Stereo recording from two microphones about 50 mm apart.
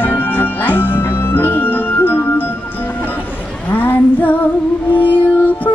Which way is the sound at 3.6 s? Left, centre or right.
Left.